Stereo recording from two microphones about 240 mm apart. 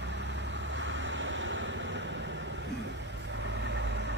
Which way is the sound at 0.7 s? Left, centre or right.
Right.